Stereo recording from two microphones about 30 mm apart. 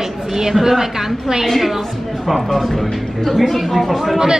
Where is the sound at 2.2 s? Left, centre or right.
Centre.